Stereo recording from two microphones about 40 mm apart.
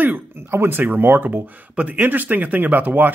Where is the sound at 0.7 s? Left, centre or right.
Right.